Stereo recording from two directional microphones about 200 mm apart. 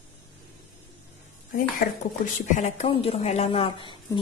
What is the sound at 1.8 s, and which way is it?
A woman's voice, 40° left (ahead or behind).